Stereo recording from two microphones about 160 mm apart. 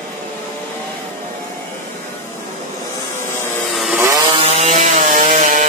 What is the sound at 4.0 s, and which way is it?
Chainsaw, 20° right (ahead or behind).